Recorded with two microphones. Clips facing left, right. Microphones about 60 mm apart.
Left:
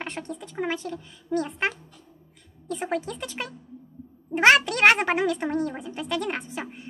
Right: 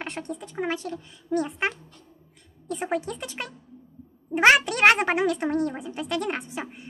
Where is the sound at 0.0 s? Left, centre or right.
Centre.